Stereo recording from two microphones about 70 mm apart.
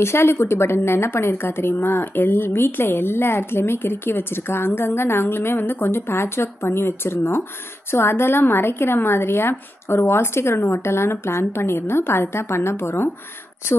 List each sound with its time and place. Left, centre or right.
0.0 s speech: left